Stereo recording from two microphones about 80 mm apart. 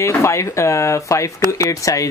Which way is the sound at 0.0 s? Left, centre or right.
Left.